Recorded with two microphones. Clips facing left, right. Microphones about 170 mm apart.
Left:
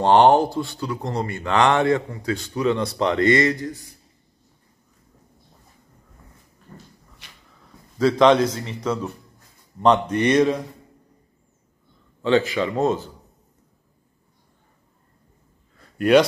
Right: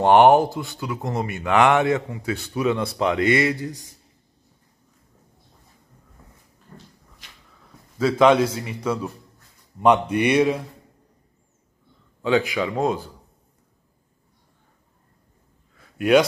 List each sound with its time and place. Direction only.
0.0 s speech: 15° right (ahead or behind)
8.0 s speech: 5° right (ahead or behind)
12.2 s speech: 10° right (ahead or behind)
15.8 s a sound: centre (ahead or behind)